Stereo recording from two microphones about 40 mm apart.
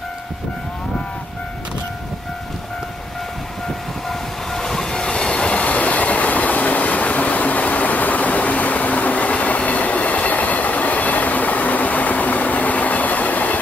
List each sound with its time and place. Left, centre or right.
4.1 s train: centre
5.7 s train: left